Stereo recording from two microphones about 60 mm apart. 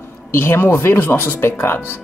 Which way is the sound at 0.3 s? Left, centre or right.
Left.